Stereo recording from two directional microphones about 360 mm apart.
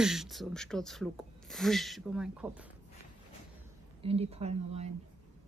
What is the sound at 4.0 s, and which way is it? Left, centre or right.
Speech, centre.